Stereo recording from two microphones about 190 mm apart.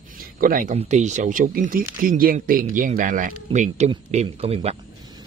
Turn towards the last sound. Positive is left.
turn(degrees=-30)  # may be behind; listen again after turning